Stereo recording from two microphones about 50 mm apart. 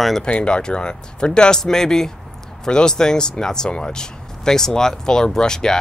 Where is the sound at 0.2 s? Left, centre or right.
Centre.